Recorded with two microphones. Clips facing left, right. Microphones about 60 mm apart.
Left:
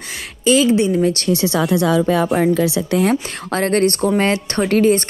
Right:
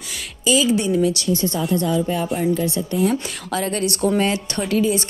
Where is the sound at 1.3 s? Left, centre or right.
Left.